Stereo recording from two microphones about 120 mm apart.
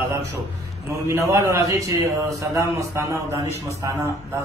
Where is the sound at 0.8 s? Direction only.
25° right (ahead or behind).